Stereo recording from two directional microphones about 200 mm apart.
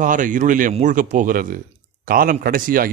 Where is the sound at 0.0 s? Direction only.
40° right (ahead or behind).